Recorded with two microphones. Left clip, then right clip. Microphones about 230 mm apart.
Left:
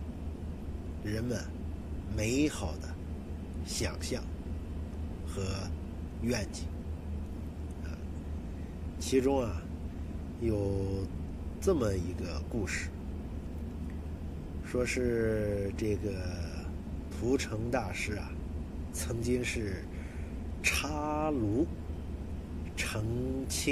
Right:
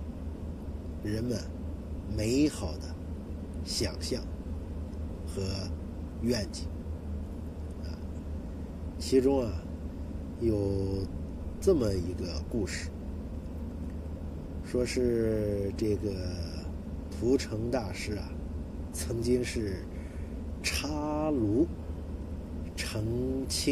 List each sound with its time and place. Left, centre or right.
1.0 s a man's voice: right
5.3 s gasp: right
9.1 s speech: right
10.4 s a man's voice: right
14.7 s speech: right
22.8 s speech: right